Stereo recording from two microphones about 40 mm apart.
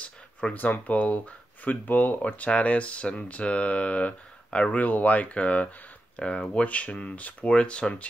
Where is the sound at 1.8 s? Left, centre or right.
Left.